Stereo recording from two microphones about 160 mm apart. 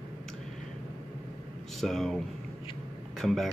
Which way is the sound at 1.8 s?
Centre (ahead or behind).